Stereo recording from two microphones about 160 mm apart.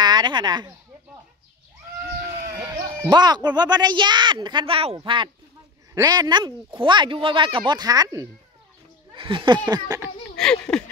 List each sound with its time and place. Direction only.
0.0 s speech: 25° right (ahead or behind)
2.4 s speech: 20° right (ahead or behind)
10.3 s speech: 5° left (ahead or behind)